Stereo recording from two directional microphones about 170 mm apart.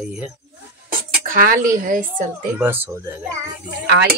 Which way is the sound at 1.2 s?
55° right (ahead or behind).